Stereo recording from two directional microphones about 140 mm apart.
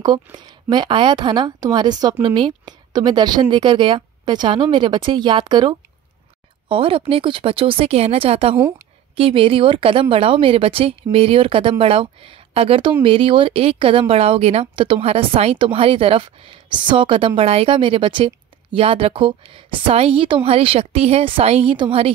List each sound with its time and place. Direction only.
0.0 s speech: 30° right (ahead or behind)